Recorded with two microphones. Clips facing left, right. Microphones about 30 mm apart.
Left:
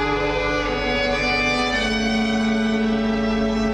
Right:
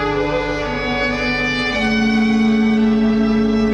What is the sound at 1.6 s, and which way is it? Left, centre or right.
Music, centre.